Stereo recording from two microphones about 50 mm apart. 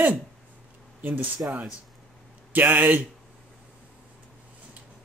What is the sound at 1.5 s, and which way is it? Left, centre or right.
Speech, right.